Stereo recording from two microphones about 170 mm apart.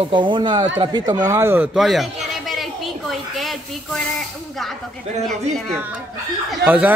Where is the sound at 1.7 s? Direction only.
Centre (ahead or behind).